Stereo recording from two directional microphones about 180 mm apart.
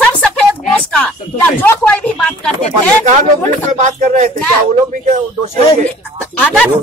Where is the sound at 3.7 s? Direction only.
40° right (ahead or behind).